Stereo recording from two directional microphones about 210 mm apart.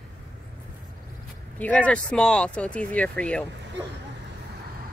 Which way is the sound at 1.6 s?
5° left (ahead or behind).